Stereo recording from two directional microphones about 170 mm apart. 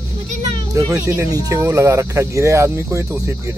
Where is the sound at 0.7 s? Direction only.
20° right (ahead or behind).